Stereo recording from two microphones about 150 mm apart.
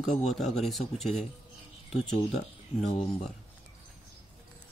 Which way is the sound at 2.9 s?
40° left (ahead or behind).